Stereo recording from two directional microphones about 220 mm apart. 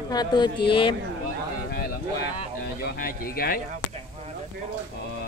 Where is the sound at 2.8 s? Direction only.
40° left (ahead or behind).